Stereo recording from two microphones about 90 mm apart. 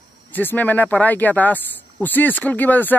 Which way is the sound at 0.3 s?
20° left (ahead or behind).